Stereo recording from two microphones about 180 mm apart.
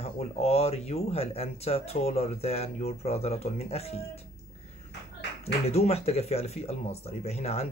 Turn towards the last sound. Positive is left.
turn(degrees=35)  # may be behind; listen again after turning